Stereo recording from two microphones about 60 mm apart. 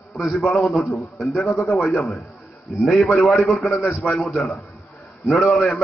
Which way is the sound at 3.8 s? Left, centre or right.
Left.